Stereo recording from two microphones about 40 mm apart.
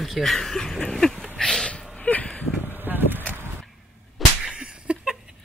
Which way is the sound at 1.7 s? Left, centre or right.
Left.